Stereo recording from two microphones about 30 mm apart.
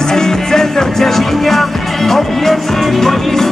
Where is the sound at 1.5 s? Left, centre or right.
Centre.